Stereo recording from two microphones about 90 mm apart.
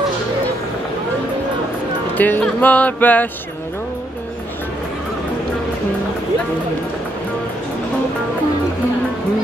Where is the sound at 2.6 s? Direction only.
15° left (ahead or behind).